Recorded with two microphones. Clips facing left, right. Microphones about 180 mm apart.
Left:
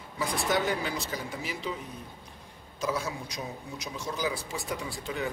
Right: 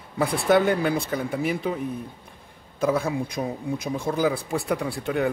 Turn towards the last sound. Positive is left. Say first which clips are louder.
# right 9 dB
turn(degrees=-60)  # may be behind; listen again after turning